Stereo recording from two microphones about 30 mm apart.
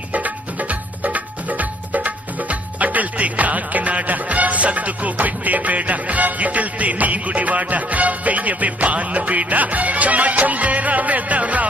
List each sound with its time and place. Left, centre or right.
0.1 s music: right